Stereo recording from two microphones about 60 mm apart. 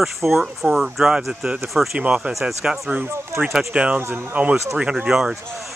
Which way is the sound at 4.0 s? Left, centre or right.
Right.